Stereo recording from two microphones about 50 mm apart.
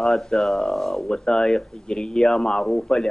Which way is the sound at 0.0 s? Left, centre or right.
Centre.